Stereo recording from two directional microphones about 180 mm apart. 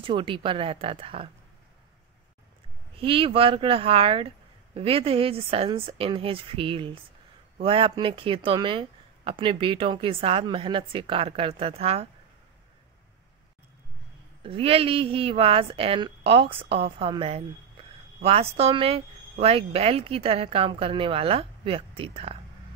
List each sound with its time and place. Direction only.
0.0 s speech: 30° right (ahead or behind)
3.0 s a woman's voice: 30° right (ahead or behind)
14.4 s a woman's voice: 30° right (ahead or behind)